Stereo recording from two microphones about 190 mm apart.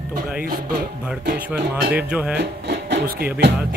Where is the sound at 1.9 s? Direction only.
10° right (ahead or behind).